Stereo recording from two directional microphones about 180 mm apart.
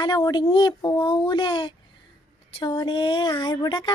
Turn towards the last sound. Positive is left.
turn(degrees=25)  # may be behind; listen again after turning